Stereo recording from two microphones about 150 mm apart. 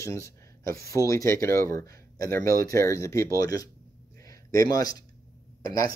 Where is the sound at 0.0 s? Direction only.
20° left (ahead or behind).